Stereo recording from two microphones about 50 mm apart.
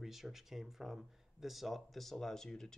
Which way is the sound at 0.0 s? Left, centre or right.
Centre.